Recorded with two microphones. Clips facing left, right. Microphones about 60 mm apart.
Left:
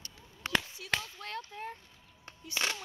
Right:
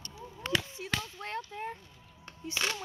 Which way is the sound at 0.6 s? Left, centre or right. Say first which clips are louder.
Right 4 dB; right.